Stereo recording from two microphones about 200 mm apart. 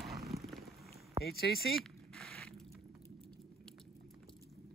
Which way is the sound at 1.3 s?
50° left (ahead or behind).